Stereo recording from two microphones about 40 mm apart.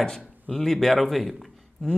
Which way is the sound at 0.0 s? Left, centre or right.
Centre.